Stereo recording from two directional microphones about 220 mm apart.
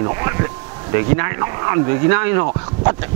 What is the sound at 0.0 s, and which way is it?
Speech, 20° right (ahead or behind).